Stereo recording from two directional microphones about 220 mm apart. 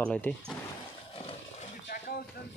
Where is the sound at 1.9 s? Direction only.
50° left (ahead or behind).